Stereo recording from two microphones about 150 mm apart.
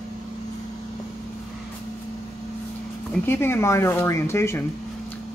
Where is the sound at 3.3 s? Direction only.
15° left (ahead or behind).